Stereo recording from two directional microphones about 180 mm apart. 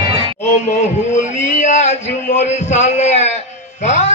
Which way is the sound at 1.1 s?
40° left (ahead or behind).